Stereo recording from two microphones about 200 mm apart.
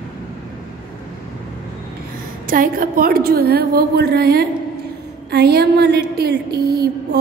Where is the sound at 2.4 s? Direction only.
45° right (ahead or behind).